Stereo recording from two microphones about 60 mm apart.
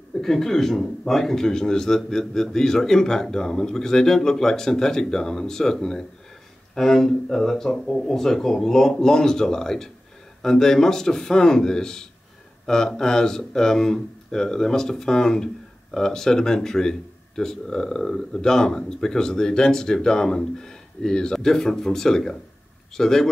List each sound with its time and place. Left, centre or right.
0.2 s speech: centre